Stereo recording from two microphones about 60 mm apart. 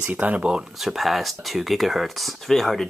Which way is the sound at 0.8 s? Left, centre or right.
Centre.